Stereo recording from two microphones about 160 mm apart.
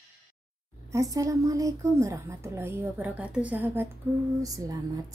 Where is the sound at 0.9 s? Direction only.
20° right (ahead or behind).